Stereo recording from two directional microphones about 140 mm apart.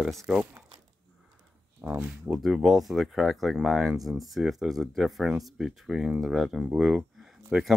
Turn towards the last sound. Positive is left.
turn(degrees=-5)  # may be behind; listen again after turning